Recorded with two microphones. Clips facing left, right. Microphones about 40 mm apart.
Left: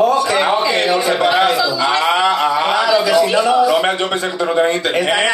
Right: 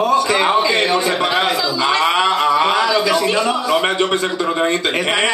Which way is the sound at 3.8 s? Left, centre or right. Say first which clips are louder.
Even; centre.